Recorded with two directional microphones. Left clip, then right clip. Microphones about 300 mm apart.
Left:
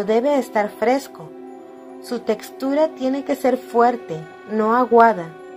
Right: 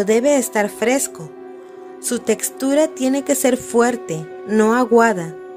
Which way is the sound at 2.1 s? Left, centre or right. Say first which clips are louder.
Right 3 dB; right.